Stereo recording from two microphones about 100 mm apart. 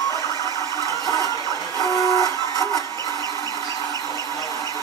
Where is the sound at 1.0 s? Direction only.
35° left (ahead or behind).